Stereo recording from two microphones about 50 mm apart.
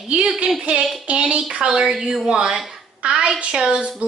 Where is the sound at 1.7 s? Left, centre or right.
Centre.